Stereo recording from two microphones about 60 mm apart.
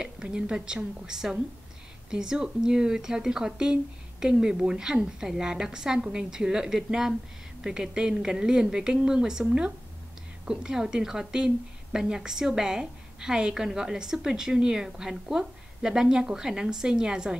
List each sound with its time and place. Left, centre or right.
0.0 s a woman's voice: centre